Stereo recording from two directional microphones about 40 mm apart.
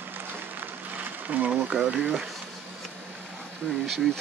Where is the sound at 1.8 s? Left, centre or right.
Right.